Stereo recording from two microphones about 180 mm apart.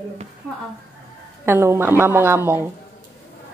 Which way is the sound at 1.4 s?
15° right (ahead or behind).